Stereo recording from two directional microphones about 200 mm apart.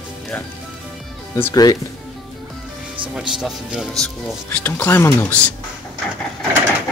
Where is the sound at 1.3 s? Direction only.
15° left (ahead or behind).